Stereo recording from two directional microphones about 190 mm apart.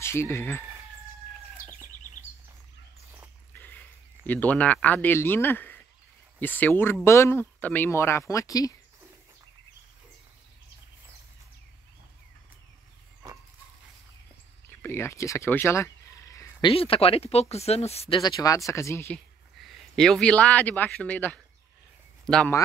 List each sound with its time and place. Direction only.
0.0 s speech: 15° left (ahead or behind)
3.5 s a sound: 10° left (ahead or behind)
4.3 s speech: 10° left (ahead or behind)
14.7 s a sound: 10° left (ahead or behind)
16.7 s speech: 30° left (ahead or behind); by 19.2 s 10° left (ahead or behind)
19.6 s speech: centre (ahead or behind)